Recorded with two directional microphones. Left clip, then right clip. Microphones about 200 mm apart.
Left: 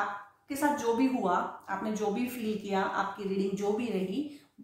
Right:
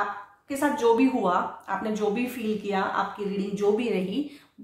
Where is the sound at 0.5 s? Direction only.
35° right (ahead or behind).